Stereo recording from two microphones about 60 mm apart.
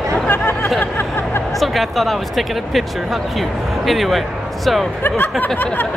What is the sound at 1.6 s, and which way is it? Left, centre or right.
Speech, centre.